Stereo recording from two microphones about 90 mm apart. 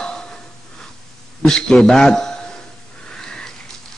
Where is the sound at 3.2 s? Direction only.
5° left (ahead or behind).